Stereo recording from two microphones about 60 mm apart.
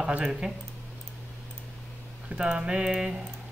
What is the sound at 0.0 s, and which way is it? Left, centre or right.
Speech, centre.